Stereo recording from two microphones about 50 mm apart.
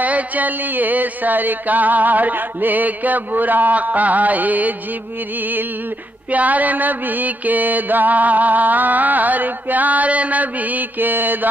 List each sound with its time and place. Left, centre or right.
0.0 s mantra: right
6.3 s mantra: right